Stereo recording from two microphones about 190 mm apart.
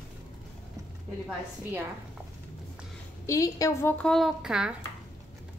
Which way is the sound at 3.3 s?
15° left (ahead or behind).